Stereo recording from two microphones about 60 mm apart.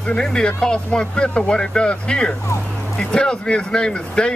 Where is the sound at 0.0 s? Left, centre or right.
Centre.